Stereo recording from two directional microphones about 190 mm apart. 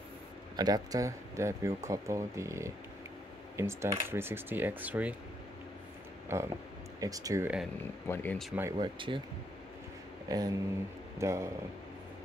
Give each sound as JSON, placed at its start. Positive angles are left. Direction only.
{"t": 0.6, "sound": "speech", "side_deg": -20}
{"t": 6.2, "sound": "speech", "side_deg": -15}
{"t": 8.1, "sound": "speech", "side_deg": 10}
{"t": 8.7, "sound": "speech", "side_deg": -25}
{"t": 10.2, "sound": "speech", "side_deg": -20}